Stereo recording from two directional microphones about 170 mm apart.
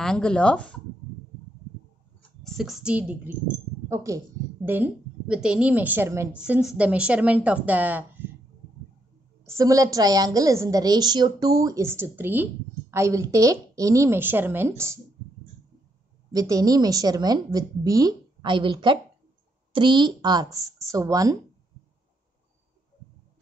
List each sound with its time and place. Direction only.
0.0 s speech: 5° left (ahead or behind)
2.4 s speech: centre (ahead or behind)
3.9 s a woman's voice: 20° right (ahead or behind)
9.4 s a woman's voice: 20° right (ahead or behind)
16.3 s a woman's voice: 20° right (ahead or behind)